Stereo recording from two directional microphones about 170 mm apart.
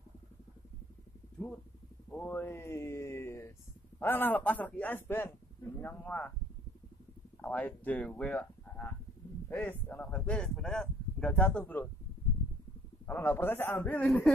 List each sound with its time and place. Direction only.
2.1 s speech: 10° left (ahead or behind)
7.4 s speech: 10° left (ahead or behind)
13.0 s speech: 10° left (ahead or behind)